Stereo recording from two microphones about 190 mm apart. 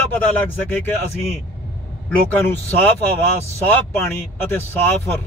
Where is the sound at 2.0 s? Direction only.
10° left (ahead or behind).